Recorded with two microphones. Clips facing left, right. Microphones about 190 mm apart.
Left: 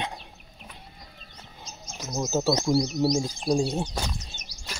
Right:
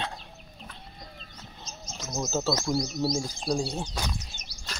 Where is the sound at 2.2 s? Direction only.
15° left (ahead or behind).